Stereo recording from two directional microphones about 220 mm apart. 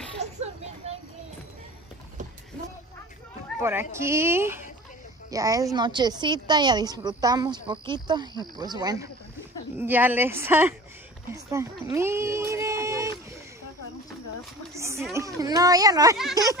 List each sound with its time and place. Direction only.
0.2 s vehicle: 30° right (ahead or behind)
3.9 s a child's voice: 10° right (ahead or behind)
14.7 s a sound: 15° right (ahead or behind)
15.1 s a child's voice: 15° right (ahead or behind)